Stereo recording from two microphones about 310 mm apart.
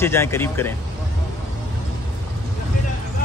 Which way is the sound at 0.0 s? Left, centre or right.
Centre.